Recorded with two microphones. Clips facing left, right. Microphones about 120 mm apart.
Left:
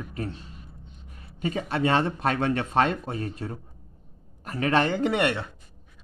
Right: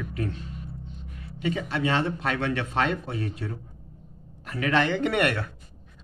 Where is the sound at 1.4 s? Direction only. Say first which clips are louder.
Left 1 dB; 45° left (ahead or behind); by 5.5 s 25° left (ahead or behind).